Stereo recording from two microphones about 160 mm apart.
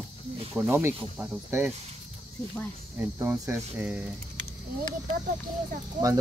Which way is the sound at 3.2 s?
15° right (ahead or behind).